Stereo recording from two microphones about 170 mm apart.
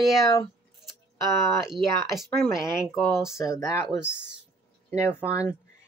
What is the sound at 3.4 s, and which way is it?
Speech, 20° left (ahead or behind).